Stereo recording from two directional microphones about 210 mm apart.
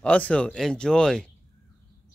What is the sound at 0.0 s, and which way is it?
Speech, 5° left (ahead or behind).